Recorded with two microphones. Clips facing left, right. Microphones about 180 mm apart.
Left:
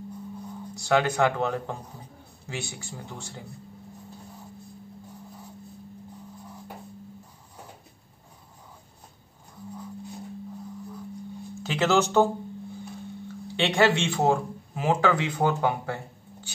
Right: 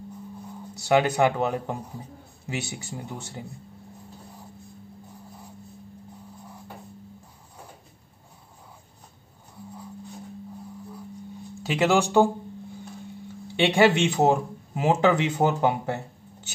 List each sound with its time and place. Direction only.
0.8 s speech: 15° right (ahead or behind)
2.8 s speech: 15° right (ahead or behind)
11.6 s speech: 15° right (ahead or behind)
13.6 s speech: 15° right (ahead or behind)